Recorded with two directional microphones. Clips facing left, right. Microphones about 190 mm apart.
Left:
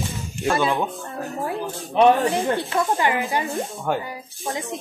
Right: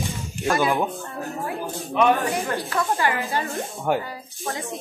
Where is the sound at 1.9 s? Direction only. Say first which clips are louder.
Left 4 dB; 30° left (ahead or behind).